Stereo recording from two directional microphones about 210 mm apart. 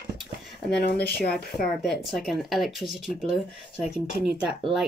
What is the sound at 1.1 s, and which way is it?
Speech, 50° left (ahead or behind).